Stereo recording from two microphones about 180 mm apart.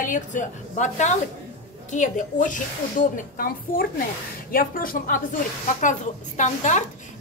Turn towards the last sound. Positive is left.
turn(degrees=40)  # may be behind; listen again after turning